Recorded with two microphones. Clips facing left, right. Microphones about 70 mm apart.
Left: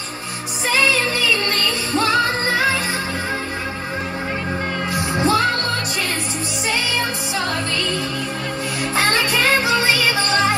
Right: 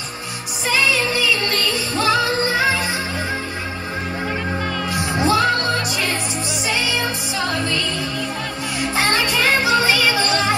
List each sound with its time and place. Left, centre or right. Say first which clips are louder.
0.7 s music: even; left
4.9 s music: even; left
6.7 s music: even; left
9.2 s music: even; left